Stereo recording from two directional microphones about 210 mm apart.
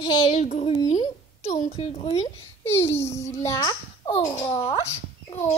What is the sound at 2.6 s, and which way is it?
A woman's voice, 10° left (ahead or behind).